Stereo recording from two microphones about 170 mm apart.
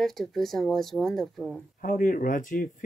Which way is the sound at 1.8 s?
50° left (ahead or behind).